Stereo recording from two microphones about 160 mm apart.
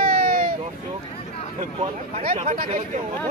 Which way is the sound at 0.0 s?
65° right (ahead or behind).